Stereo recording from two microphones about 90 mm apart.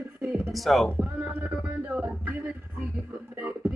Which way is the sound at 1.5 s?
15° right (ahead or behind).